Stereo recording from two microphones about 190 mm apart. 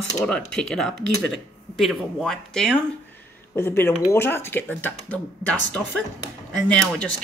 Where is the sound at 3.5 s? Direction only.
10° left (ahead or behind).